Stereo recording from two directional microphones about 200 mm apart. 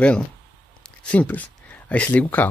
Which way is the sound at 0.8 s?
5° left (ahead or behind).